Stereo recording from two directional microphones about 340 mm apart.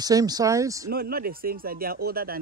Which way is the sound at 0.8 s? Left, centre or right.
Right.